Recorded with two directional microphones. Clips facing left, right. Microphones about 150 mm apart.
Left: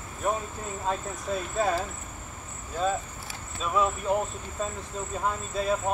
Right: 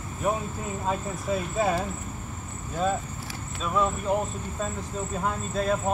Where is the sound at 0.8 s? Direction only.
5° right (ahead or behind).